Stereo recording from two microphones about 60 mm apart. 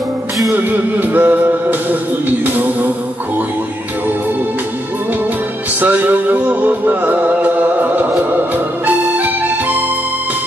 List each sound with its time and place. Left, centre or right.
0.6 s music: right
5.8 s music: right
8.8 s accordion: right